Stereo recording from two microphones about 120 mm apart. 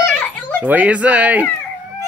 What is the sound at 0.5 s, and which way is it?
Speech, 15° right (ahead or behind).